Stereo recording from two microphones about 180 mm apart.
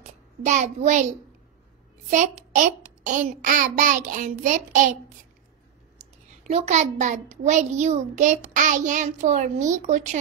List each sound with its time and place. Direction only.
0.4 s a child's voice: 40° right (ahead or behind)
2.0 s a child's voice: 40° right (ahead or behind)
6.4 s a child's voice: 40° right (ahead or behind)